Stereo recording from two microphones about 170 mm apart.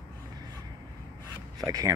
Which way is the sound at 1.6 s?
20° right (ahead or behind).